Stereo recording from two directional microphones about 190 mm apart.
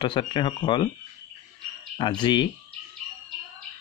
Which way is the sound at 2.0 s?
25° left (ahead or behind).